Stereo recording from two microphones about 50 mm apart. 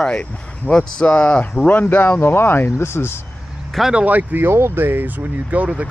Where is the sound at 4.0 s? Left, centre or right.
Right.